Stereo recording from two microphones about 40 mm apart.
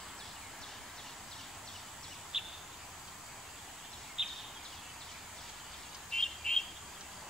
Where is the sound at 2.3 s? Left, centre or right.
Centre.